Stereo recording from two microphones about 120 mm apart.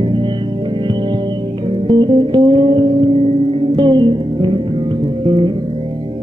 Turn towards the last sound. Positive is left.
turn(degrees=-45)  # may be behind; listen again after turning